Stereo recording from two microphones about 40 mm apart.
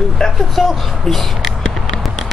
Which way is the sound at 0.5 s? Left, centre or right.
Centre.